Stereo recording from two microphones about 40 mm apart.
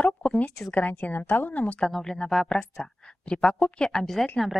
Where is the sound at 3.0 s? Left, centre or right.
Left.